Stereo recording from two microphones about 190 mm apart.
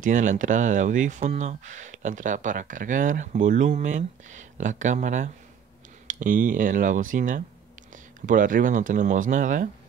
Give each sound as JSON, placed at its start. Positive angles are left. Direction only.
{"t": 0.0, "sound": "speech", "side_deg": -40}